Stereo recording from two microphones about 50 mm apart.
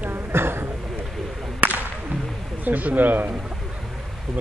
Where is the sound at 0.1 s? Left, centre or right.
Right.